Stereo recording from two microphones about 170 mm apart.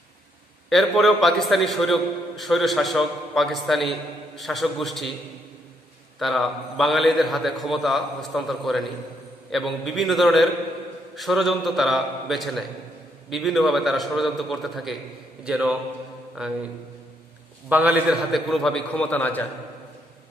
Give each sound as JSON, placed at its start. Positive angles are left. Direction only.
{"t": 0.7, "sound": "a man's voice", "side_deg": 0}
{"t": 6.1, "sound": "a man's voice", "side_deg": 0}
{"t": 17.6, "sound": "a man's voice", "side_deg": -10}
{"t": 18.3, "sound": "a man's voice", "side_deg": 0}